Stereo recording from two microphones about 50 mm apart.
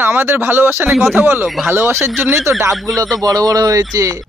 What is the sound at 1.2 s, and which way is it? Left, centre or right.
Speech, right.